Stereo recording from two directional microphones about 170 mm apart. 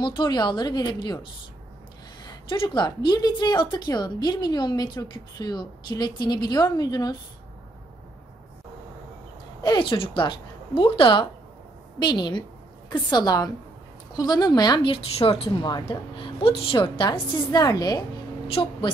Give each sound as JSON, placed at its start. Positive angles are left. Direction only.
{"t": 0.0, "sound": "a woman's voice", "side_deg": 25}
{"t": 9.6, "sound": "a woman's voice", "side_deg": 25}